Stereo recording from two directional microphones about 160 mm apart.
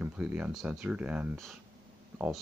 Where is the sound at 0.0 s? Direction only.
10° right (ahead or behind).